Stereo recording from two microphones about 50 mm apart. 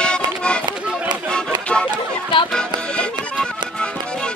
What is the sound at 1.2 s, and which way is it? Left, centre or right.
Music, centre.